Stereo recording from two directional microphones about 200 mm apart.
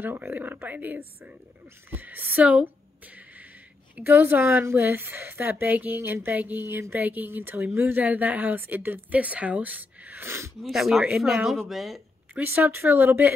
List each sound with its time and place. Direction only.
0.0 s a woman's voice: 10° right (ahead or behind)
10.6 s speech: centre (ahead or behind)